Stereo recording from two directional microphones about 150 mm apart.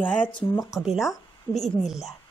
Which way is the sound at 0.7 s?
Centre (ahead or behind).